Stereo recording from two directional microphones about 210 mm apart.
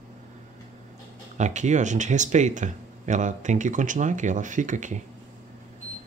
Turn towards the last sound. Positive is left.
turn(degrees=-35)  # may be behind; listen again after turning